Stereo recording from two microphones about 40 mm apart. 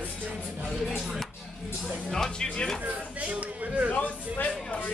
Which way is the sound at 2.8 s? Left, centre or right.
Right.